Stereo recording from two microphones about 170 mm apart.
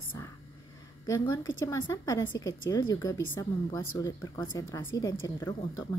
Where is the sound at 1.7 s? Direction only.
15° left (ahead or behind).